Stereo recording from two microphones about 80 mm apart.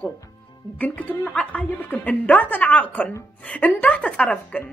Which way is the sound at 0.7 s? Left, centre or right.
Centre.